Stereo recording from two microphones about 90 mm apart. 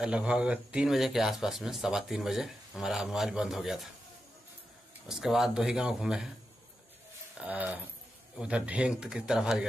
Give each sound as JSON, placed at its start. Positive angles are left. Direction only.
{"t": 0.0, "sound": "speech", "side_deg": -10}
{"t": 5.0, "sound": "speech", "side_deg": -5}
{"t": 7.3, "sound": "speech", "side_deg": -15}